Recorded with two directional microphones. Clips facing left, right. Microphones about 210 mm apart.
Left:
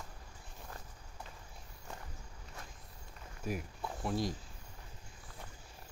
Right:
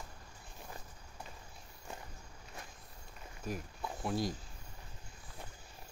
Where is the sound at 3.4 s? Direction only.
5° left (ahead or behind).